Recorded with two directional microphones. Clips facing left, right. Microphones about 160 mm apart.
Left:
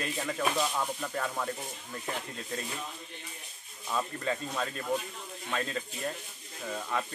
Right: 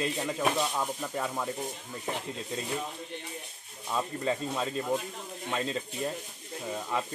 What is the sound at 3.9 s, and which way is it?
Speech, 20° right (ahead or behind).